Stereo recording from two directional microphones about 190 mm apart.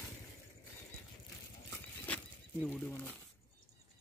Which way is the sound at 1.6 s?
10° left (ahead or behind).